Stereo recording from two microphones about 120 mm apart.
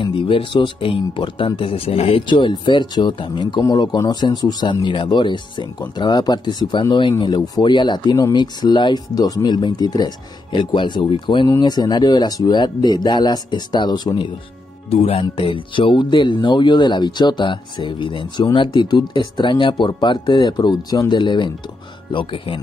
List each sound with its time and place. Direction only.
0.0 s speech: 45° left (ahead or behind)
14.9 s speech: 55° left (ahead or behind)